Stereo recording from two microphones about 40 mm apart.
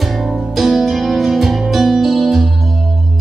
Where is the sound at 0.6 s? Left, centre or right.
Centre.